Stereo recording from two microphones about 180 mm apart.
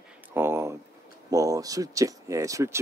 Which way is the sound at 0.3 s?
15° right (ahead or behind).